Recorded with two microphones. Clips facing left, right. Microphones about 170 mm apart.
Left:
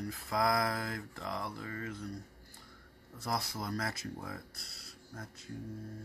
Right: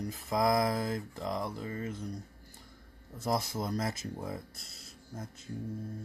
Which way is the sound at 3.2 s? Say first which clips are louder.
Right 5 dB; 20° right (ahead or behind).